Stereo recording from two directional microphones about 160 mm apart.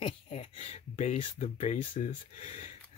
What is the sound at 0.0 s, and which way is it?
Speech, 35° left (ahead or behind).